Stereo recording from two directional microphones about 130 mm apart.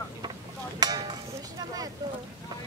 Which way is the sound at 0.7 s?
30° right (ahead or behind).